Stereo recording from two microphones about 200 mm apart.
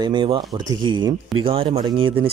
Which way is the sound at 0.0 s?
25° right (ahead or behind).